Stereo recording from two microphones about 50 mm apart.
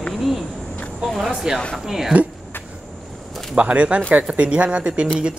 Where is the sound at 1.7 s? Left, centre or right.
Centre.